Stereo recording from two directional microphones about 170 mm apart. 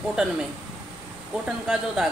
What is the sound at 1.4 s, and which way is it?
Speech, 5° right (ahead or behind).